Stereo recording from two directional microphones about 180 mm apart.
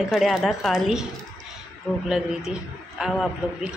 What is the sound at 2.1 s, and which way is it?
A woman's voice, 5° right (ahead or behind).